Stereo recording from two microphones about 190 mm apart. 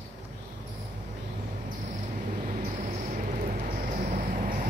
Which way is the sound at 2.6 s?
40° right (ahead or behind).